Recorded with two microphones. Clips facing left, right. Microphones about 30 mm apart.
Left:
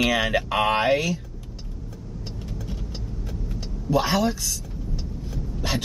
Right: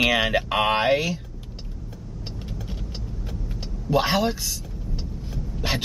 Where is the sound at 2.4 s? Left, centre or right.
Centre.